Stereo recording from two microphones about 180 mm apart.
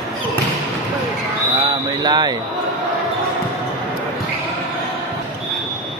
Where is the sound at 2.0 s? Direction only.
25° right (ahead or behind).